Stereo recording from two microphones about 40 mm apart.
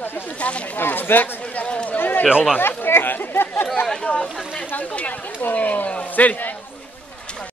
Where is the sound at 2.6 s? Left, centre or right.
Left.